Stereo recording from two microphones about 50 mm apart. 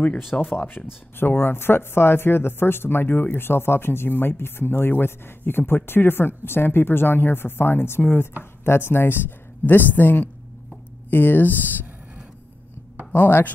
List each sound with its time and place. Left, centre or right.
0.3 s speech: left
13.1 s speech: left